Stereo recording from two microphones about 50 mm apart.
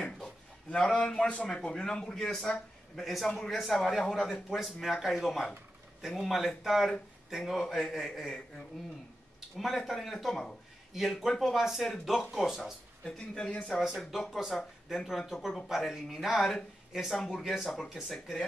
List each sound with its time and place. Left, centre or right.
0.2 s a sound: centre
1.5 s speech: centre
7.6 s speech: centre
9.6 s speech: centre
13.0 s speech: centre
13.7 s speech: centre